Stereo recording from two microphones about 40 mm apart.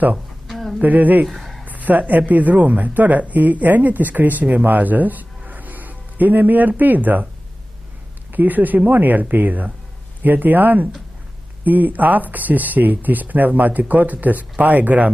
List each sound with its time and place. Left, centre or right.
0.5 s a sound: centre
0.8 s speech: right
1.2 s speech: centre
1.7 s speech: right
5.5 s music: right
6.8 s speech: right
8.3 s speech: right